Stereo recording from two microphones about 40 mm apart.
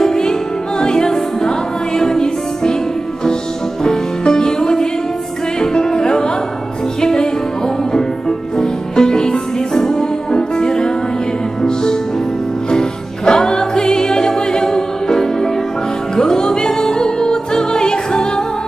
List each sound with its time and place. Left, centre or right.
0.0 s music: centre
3.8 s music: centre
8.5 s music: centre